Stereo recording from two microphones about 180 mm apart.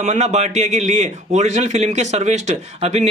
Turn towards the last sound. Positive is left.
turn(degrees=-40)  # may be behind; listen again after turning